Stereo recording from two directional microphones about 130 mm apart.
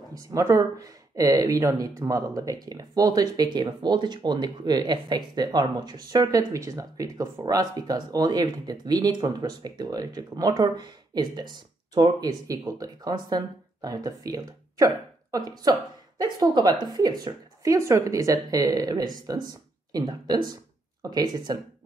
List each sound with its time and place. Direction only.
0.1 s a woman's voice: 25° right (ahead or behind)